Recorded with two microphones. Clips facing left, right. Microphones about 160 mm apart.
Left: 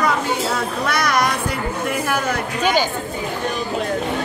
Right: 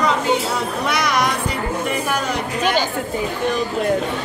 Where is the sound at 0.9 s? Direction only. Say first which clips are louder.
Left 1 dB; 15° right (ahead or behind).